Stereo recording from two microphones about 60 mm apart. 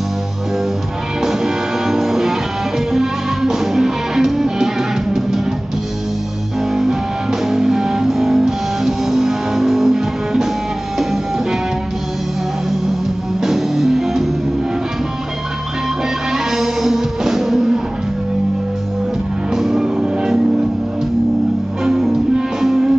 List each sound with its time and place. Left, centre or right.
1.2 s music: centre
6.7 s music: centre
13.4 s music: centre
16.3 s music: centre
19.5 s music: centre
21.8 s music: centre